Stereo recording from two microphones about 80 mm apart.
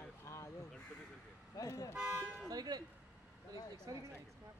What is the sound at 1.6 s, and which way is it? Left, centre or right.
Speech, left.